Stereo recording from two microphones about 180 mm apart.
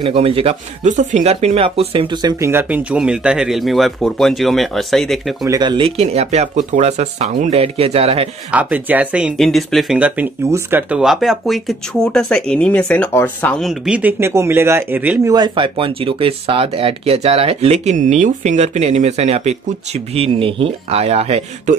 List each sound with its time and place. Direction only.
0.0 s speech: 30° right (ahead or behind)
2.4 s speech: 10° right (ahead or behind)
5.4 s speech: 20° right (ahead or behind)
8.5 s speech: 10° right (ahead or behind)
15.3 s speech: 25° right (ahead or behind)